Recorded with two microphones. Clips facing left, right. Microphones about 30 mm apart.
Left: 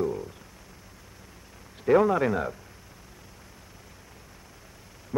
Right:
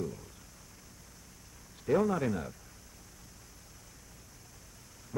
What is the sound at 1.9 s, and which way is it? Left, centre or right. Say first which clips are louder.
Speech: left 8 dB; left.